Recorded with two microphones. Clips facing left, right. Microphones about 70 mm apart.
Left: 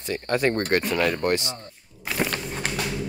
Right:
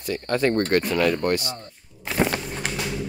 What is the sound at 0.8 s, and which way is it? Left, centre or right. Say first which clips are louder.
Speech: right 2 dB; centre.